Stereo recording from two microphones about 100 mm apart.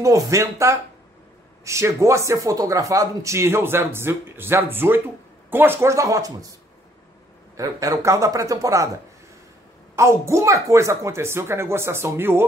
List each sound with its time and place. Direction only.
0.0 s speech: 30° right (ahead or behind)
7.5 s speech: 35° right (ahead or behind)
9.9 s speech: 30° right (ahead or behind)